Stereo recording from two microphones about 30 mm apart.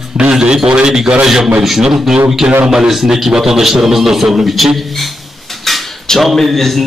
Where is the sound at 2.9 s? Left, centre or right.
Centre.